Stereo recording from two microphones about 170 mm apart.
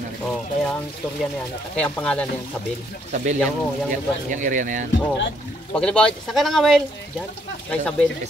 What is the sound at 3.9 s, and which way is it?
Speech, 50° right (ahead or behind).